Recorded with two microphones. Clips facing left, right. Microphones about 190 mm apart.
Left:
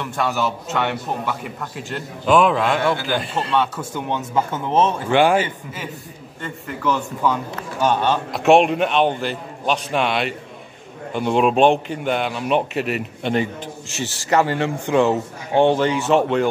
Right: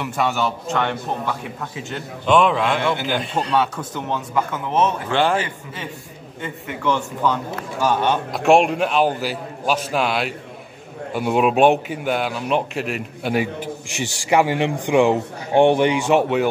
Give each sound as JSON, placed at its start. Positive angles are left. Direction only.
{"t": 0.0, "sound": "a man's voice", "side_deg": -5}
{"t": 2.8, "sound": "a man's voice", "side_deg": -25}
{"t": 3.2, "sound": "a man's voice", "side_deg": 0}
{"t": 4.1, "sound": "speech", "side_deg": 30}
{"t": 5.1, "sound": "a man's voice", "side_deg": 10}
{"t": 6.4, "sound": "a man's voice", "side_deg": 5}